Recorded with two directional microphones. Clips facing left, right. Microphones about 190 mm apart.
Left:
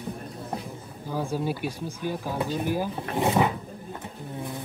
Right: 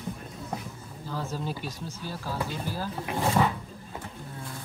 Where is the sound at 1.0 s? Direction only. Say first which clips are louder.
Left 5 dB; 15° left (ahead or behind).